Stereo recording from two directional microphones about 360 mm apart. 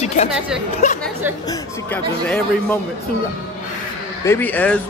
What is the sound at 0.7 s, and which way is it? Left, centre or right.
Speech, centre.